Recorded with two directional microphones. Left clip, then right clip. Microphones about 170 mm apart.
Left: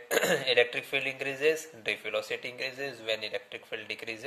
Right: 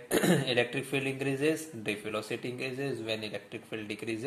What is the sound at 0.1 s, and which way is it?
Speech, 30° left (ahead or behind).